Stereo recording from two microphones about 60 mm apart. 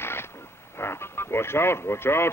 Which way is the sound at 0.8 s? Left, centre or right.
Left.